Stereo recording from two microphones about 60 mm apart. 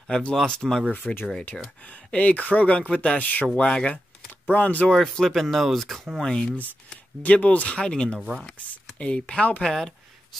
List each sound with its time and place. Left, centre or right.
0.1 s speech: centre
3.5 s speech: centre
4.6 s speech: left
4.8 s speech: centre
6.2 s speech: centre
7.2 s speech: left